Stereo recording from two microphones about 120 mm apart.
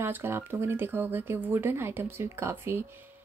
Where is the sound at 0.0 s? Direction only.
20° right (ahead or behind).